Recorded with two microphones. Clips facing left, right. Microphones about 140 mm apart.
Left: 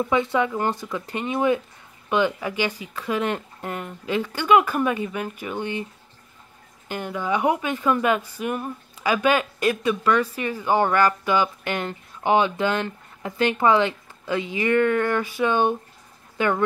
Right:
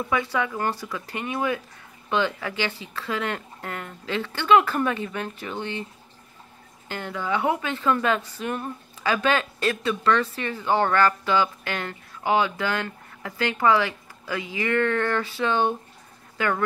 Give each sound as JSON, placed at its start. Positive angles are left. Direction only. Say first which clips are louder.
{"t": 0.1, "sound": "a woman's voice", "louder": "left 2 dB", "side_deg": 20}
{"t": 6.9, "sound": "a woman's voice", "louder": "left 2 dB", "side_deg": 15}